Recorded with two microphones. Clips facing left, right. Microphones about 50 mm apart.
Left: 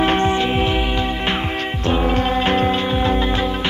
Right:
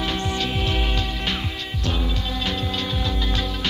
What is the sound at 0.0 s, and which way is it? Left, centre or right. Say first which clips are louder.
Music: left 9 dB; left.